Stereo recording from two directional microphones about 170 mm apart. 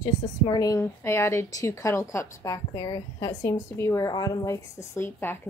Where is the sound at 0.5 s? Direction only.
20° left (ahead or behind).